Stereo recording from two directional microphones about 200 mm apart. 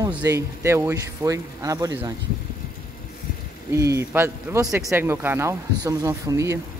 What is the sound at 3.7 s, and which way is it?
Speech, 15° right (ahead or behind).